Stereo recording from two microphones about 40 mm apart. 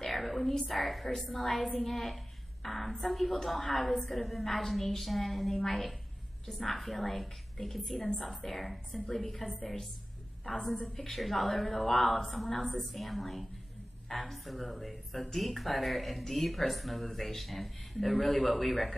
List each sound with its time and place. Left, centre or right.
0.0 s a woman's voice: centre
11.0 s a woman's voice: centre